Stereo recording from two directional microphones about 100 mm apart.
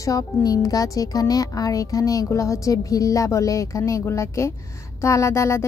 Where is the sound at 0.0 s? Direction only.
35° left (ahead or behind).